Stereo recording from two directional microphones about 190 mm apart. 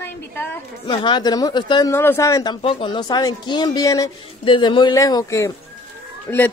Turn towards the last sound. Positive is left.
turn(degrees=5)  # may be behind; listen again after turning